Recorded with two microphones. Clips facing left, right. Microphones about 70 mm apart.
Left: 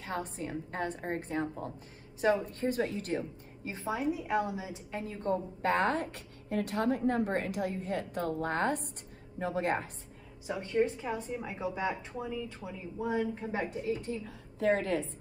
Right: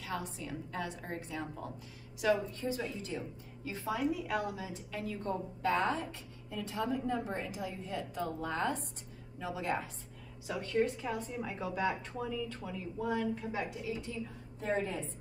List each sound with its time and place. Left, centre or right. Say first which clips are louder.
0.0 s a woman's voice: left 3 dB; left
2.6 s a woman's voice: left 5 dB; left
3.6 s a woman's voice: left 1 dB; left
5.7 s a woman's voice: left 3 dB; left
10.4 s a woman's voice: left 2 dB; left
14.6 s a woman's voice: left 6 dB; left